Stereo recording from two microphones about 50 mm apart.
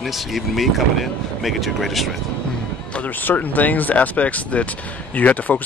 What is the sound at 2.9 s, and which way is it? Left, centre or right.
Speech, left.